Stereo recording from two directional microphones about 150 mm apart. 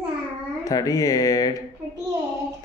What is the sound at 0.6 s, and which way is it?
Speech, 25° left (ahead or behind).